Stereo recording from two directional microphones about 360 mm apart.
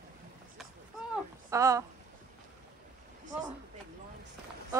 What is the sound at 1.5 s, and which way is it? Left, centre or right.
Speech, centre.